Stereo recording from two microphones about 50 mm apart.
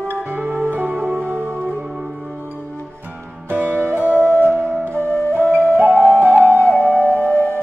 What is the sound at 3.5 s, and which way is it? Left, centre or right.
Music, right.